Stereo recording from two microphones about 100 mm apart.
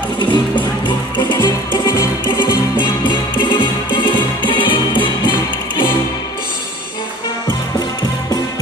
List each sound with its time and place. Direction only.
0.2 s music: 50° left (ahead or behind)